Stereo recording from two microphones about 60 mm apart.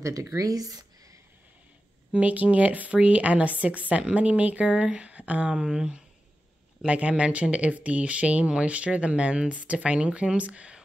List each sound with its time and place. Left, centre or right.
0.0 s speech: right
2.1 s speech: right
5.5 s speech: centre